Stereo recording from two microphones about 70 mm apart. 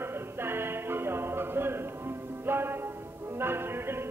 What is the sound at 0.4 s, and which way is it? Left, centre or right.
Music, right.